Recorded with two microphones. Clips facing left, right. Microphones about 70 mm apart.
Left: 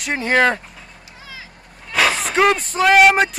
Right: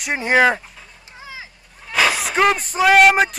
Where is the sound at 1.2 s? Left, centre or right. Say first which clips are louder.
Right 3 dB; right.